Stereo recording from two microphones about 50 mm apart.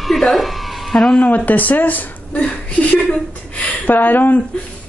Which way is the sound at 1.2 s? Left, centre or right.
Left.